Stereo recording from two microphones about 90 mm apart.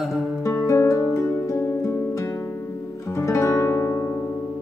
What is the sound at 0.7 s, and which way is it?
Music, 30° left (ahead or behind).